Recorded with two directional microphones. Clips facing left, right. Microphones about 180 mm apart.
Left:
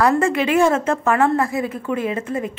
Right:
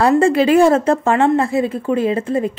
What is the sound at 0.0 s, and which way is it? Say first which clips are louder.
A woman's voice: right 5 dB; 30° right (ahead or behind).